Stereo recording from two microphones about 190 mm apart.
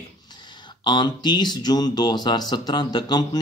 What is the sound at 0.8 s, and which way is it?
Speech, 20° left (ahead or behind).